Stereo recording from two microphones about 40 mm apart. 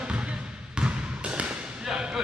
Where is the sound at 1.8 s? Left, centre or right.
Right.